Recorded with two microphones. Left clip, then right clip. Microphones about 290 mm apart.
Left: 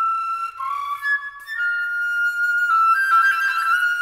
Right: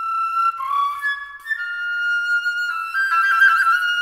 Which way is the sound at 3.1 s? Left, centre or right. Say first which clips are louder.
Right 2 dB; centre.